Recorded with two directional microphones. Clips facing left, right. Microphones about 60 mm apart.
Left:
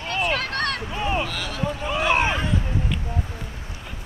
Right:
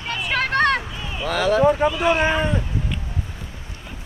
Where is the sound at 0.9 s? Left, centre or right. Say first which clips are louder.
Left 4 dB; left.